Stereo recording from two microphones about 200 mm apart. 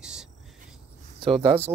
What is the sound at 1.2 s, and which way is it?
Speech, 25° right (ahead or behind).